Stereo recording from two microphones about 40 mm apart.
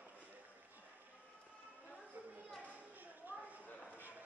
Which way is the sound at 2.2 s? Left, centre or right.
Right.